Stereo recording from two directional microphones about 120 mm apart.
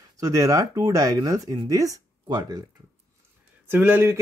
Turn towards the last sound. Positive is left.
turn(degrees=-20)  # may be behind; listen again after turning